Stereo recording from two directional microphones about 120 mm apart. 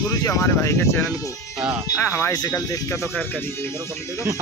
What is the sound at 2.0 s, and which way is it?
Speech, 20° left (ahead or behind).